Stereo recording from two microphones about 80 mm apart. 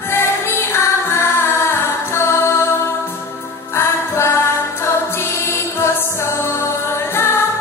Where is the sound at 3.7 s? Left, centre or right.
Left.